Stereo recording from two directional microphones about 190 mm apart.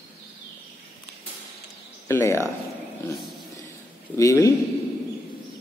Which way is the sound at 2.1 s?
15° left (ahead or behind).